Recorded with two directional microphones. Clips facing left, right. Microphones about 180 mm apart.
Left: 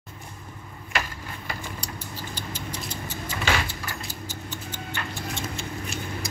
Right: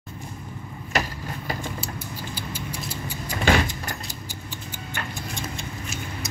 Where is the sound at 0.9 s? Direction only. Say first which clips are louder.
Right 4 dB; 40° right (ahead or behind).